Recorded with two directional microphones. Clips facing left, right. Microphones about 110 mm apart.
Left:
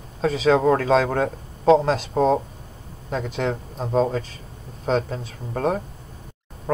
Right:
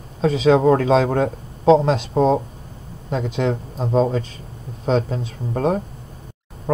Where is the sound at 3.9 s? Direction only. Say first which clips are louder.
Right 2 dB; 30° right (ahead or behind).